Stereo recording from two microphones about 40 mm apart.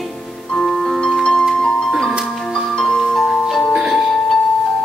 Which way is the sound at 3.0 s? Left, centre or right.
Centre.